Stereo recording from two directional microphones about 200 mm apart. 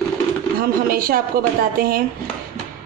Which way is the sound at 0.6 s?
45° right (ahead or behind).